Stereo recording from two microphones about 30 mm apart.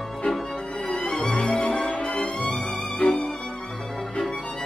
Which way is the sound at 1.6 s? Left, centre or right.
Left.